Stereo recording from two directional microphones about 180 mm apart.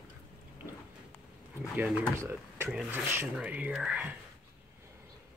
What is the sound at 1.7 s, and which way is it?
Speech, 5° right (ahead or behind).